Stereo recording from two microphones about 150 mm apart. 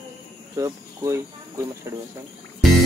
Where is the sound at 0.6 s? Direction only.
20° right (ahead or behind).